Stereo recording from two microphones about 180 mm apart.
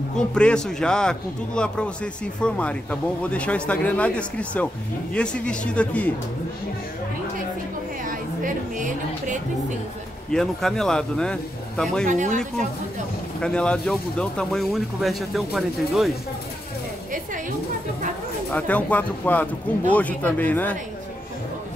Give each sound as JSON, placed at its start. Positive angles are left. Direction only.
{"t": 0.3, "sound": "speech", "side_deg": 5}
{"t": 8.0, "sound": "a woman's voice", "side_deg": -50}
{"t": 10.3, "sound": "speech", "side_deg": 0}
{"t": 12.1, "sound": "speech", "side_deg": -45}
{"t": 13.4, "sound": "speech", "side_deg": 5}
{"t": 18.5, "sound": "speech", "side_deg": 10}